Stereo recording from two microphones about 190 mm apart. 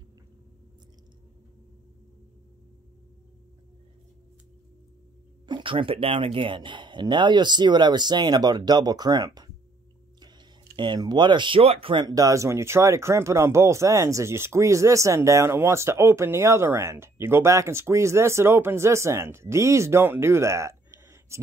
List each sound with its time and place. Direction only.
5.5 s speech: 25° right (ahead or behind)
10.8 s speech: 25° right (ahead or behind)